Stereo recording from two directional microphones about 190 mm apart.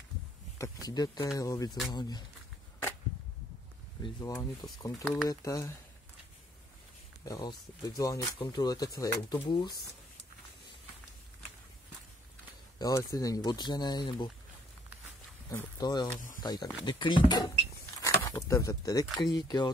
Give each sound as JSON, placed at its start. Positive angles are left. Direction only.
{"t": 0.6, "sound": "speech", "side_deg": 20}
{"t": 4.0, "sound": "speech", "side_deg": 20}
{"t": 7.2, "sound": "speech", "side_deg": 20}
{"t": 12.7, "sound": "speech", "side_deg": 20}
{"t": 15.8, "sound": "speech", "side_deg": 20}